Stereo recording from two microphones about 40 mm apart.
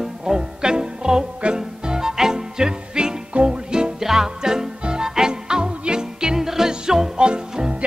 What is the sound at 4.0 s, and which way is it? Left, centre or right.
Music, centre.